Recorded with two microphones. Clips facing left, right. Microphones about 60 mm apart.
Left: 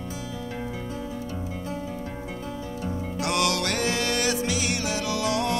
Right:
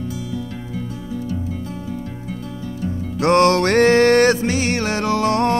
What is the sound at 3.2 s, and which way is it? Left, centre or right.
Music, right.